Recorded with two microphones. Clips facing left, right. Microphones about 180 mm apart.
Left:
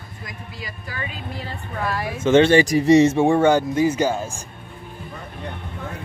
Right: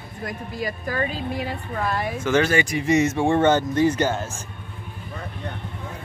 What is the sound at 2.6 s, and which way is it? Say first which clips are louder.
Speech: left 6 dB; 35° left (ahead or behind).